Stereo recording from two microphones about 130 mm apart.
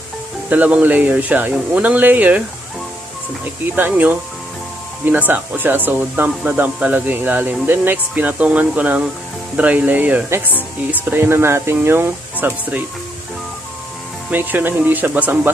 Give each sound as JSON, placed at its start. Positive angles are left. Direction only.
{"t": 0.5, "sound": "speech", "side_deg": -10}
{"t": 3.7, "sound": "speech", "side_deg": -15}
{"t": 14.3, "sound": "speech", "side_deg": -15}